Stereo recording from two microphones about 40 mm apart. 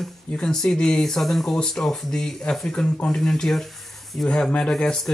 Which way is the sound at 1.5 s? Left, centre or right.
Centre.